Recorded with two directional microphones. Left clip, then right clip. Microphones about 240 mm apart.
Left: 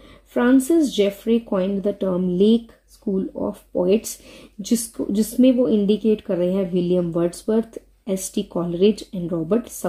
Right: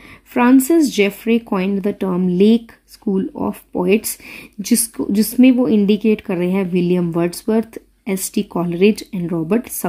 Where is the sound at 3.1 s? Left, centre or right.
Right.